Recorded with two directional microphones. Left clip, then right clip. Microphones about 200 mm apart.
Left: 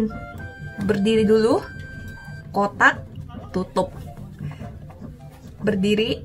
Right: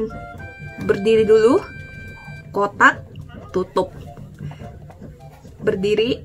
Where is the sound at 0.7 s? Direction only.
15° right (ahead or behind).